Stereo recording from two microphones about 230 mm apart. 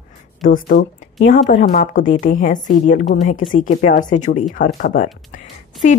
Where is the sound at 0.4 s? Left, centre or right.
Left.